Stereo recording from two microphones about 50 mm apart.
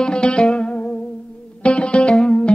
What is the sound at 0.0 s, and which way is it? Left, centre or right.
Music, centre.